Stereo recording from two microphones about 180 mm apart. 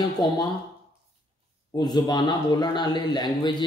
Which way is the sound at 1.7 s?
25° left (ahead or behind).